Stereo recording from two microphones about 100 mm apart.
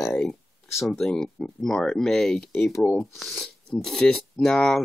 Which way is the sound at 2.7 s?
25° left (ahead or behind).